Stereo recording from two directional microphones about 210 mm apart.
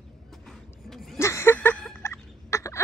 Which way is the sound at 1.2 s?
15° left (ahead or behind).